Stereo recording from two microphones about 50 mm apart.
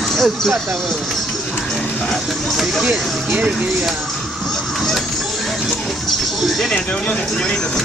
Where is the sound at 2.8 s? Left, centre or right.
Centre.